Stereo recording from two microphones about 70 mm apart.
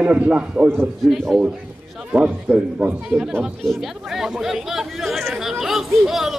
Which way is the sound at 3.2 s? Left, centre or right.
Centre.